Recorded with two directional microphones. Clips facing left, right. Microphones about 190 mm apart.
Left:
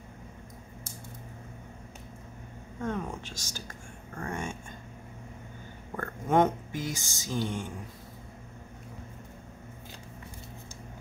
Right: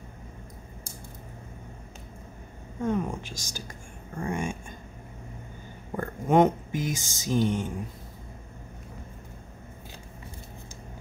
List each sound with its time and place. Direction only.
2.8 s speech: 10° right (ahead or behind)
5.9 s speech: 15° right (ahead or behind)